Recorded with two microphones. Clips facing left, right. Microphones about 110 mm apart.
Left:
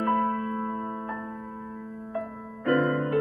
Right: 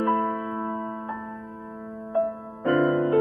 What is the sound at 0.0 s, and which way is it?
Music, 30° right (ahead or behind).